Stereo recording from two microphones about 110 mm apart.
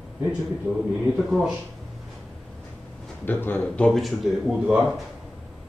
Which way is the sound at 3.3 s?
20° left (ahead or behind).